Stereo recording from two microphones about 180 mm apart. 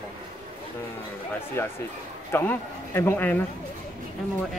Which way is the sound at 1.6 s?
15° left (ahead or behind).